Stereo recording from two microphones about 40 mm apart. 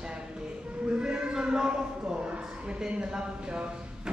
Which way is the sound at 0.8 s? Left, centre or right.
Right.